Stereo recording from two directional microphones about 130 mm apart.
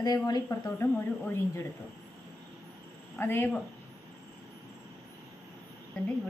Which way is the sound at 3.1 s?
15° left (ahead or behind).